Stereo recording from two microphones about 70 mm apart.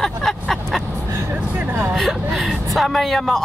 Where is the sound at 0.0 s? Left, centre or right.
Centre.